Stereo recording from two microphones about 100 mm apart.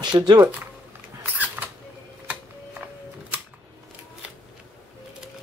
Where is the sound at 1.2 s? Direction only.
20° right (ahead or behind).